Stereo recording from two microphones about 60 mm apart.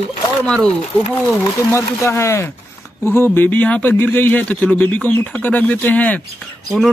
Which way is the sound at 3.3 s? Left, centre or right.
Left.